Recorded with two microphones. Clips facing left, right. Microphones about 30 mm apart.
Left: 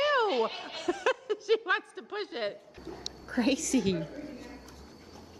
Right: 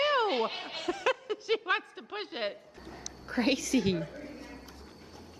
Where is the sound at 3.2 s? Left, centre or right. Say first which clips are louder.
Even; right.